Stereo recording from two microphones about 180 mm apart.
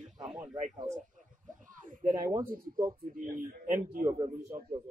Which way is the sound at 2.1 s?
20° right (ahead or behind).